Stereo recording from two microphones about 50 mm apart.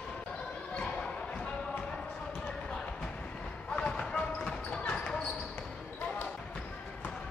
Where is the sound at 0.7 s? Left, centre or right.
Left.